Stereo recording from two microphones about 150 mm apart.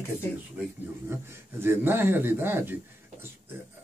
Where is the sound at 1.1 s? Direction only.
15° right (ahead or behind).